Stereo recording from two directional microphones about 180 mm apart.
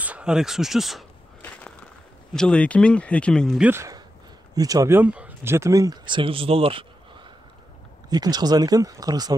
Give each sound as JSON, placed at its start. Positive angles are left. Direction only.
{"t": 0.0, "sound": "speech", "side_deg": -5}
{"t": 1.4, "sound": "a sound", "side_deg": 10}
{"t": 2.3, "sound": "speech", "side_deg": 5}
{"t": 8.1, "sound": "speech", "side_deg": -20}